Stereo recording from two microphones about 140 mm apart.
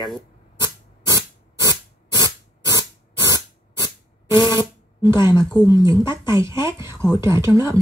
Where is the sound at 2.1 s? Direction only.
25° right (ahead or behind).